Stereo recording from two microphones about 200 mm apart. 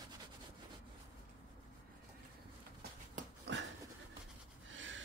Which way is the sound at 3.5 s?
65° right (ahead or behind).